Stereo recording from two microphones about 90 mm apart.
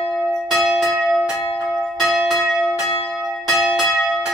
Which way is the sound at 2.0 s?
Centre (ahead or behind).